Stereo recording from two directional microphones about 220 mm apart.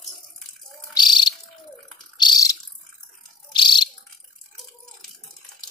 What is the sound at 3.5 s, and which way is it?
Bird, 20° left (ahead or behind).